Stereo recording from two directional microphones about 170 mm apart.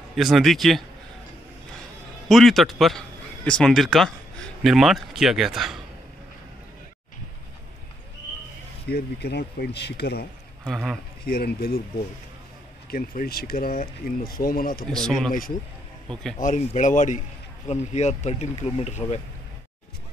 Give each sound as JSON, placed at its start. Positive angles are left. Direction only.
{"t": 0.1, "sound": "a man's voice", "side_deg": 0}
{"t": 2.2, "sound": "a man's voice", "side_deg": 0}
{"t": 8.8, "sound": "speech", "side_deg": 70}
{"t": 10.6, "sound": "speech", "side_deg": 0}
{"t": 11.2, "sound": "speech", "side_deg": 65}
{"t": 12.9, "sound": "speech", "side_deg": 60}
{"t": 14.9, "sound": "a man's voice", "side_deg": 5}
{"t": 16.3, "sound": "speech", "side_deg": 45}